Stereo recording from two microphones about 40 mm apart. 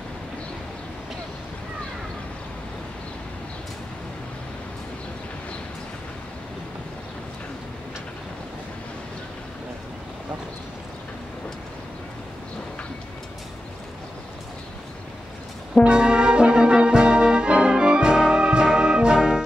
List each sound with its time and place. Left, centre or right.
15.8 s brass instrument: right